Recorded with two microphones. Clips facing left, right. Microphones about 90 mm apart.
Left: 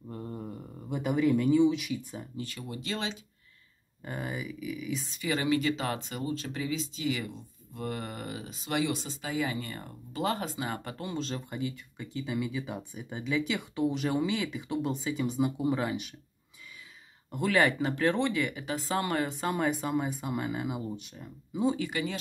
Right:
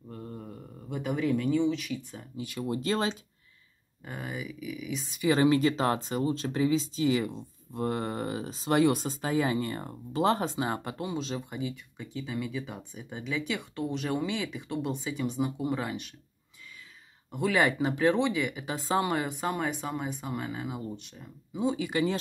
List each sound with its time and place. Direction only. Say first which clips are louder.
0.1 s speech: left 2 dB; 10° left (ahead or behind)
2.3 s speech: right 8 dB; 15° right (ahead or behind)
2.7 s speech: right 7 dB; 40° right (ahead or behind)
4.0 s speech: left 1 dB; centre (ahead or behind)
5.3 s speech: right 4 dB; 35° right (ahead or behind)
10.8 s speech: right 2 dB; 15° right (ahead or behind); by 16.2 s 5° left (ahead or behind)
17.3 s speech: even; centre (ahead or behind)
21.9 s speech: right 5 dB; 35° right (ahead or behind)